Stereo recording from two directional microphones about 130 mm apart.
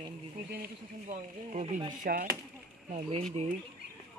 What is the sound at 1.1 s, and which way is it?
Speech, 70° right (ahead or behind).